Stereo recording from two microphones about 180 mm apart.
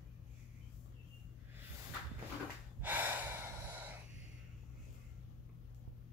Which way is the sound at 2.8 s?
10° right (ahead or behind).